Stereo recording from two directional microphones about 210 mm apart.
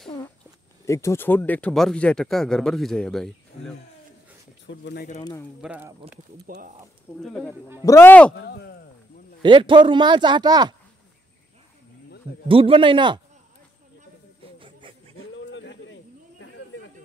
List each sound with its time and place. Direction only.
0.8 s speech: 15° left (ahead or behind)
4.6 s speech: 55° left (ahead or behind)
5.6 s speech: 5° right (ahead or behind)
6.4 s speech: 40° right (ahead or behind)
7.2 s speech: centre (ahead or behind)
7.8 s speech: 10° left (ahead or behind)
8.4 s speech: 50° left (ahead or behind)
9.4 s speech: 25° right (ahead or behind)
12.4 s speech: 25° right (ahead or behind)
14.4 s a sound: 25° right (ahead or behind)
15.3 s a sound: 60° left (ahead or behind)